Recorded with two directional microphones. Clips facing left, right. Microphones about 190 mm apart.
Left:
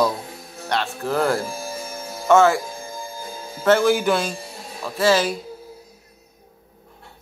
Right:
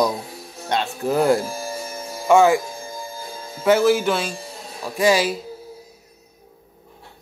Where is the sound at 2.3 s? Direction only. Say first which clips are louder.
Right 1 dB; 15° right (ahead or behind).